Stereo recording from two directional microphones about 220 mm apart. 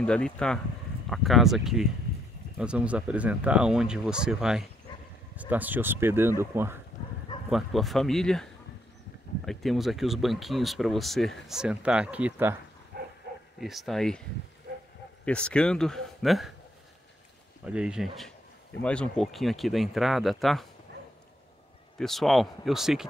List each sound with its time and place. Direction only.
0.0 s speech: 5° left (ahead or behind)
7.4 s speech: centre (ahead or behind)
9.5 s speech: centre (ahead or behind)
12.9 s dog: 45° right (ahead or behind)
13.6 s speech: centre (ahead or behind)
15.2 s speech: 5° left (ahead or behind)
17.6 s speech: 5° right (ahead or behind)
21.9 s speech: centre (ahead or behind)